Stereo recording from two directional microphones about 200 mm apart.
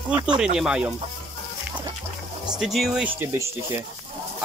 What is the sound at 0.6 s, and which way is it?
Speech, 5° right (ahead or behind).